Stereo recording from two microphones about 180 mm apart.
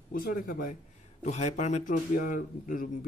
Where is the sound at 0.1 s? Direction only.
50° left (ahead or behind).